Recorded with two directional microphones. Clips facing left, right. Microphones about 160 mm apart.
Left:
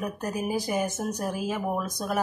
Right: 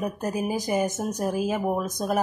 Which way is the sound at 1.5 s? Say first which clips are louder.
Right 3 dB; 15° right (ahead or behind).